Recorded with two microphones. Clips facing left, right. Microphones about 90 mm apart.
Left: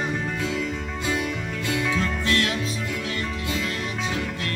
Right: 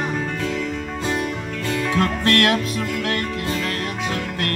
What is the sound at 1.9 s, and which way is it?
Music, 60° right (ahead or behind).